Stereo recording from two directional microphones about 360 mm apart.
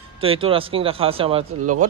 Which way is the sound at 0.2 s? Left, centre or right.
Centre.